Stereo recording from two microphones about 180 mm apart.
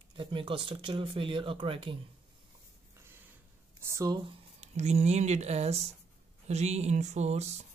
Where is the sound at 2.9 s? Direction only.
10° right (ahead or behind).